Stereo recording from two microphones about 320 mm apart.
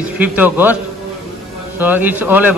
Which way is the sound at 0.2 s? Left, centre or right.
Centre.